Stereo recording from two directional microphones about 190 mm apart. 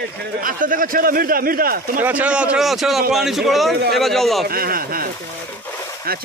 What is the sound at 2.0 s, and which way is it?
A man's voice, 10° right (ahead or behind).